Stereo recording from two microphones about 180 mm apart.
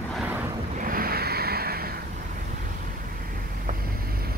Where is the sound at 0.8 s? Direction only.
50° right (ahead or behind).